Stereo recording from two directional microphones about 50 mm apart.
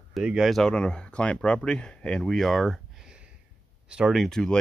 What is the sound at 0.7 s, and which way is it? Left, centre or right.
Speech, centre.